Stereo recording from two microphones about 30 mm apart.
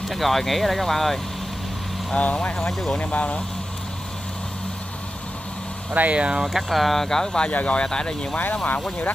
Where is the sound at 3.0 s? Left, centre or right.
Left.